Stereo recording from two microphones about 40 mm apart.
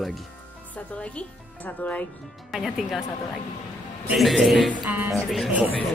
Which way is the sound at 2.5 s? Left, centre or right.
Centre.